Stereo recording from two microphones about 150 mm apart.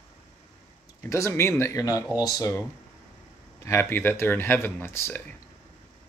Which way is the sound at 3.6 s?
15° left (ahead or behind).